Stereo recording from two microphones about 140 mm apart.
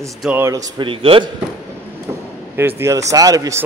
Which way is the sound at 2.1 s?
15° right (ahead or behind).